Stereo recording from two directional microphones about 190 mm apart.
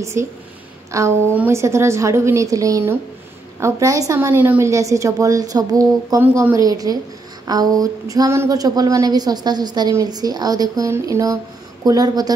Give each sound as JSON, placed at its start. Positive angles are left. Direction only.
{"t": 0.0, "sound": "a woman's voice", "side_deg": -15}